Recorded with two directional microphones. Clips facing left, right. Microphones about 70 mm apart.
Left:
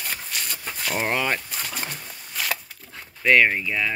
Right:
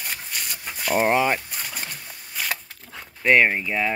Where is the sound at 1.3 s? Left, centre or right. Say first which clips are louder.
Left 1 dB; centre.